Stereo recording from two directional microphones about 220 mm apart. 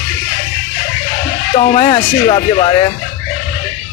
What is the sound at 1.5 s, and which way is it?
Speech, 25° left (ahead or behind).